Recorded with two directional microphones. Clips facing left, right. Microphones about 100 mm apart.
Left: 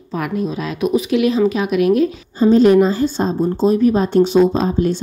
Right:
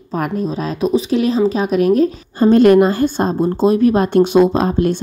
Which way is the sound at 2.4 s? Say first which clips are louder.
Right 1 dB; 60° right (ahead or behind).